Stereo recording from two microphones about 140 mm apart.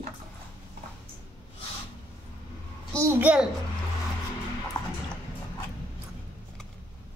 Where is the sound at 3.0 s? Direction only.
15° right (ahead or behind).